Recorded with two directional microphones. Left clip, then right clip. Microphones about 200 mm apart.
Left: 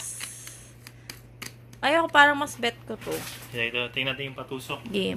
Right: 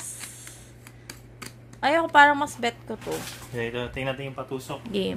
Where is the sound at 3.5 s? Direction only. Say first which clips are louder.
Left 3 dB; 40° right (ahead or behind).